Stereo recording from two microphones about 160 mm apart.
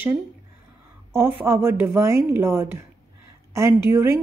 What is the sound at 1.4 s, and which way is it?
Speech, 15° right (ahead or behind).